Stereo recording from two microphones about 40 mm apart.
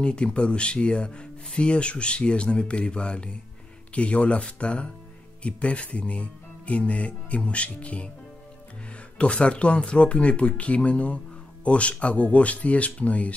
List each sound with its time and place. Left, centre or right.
0.0 s speech: left
9.2 s speech: left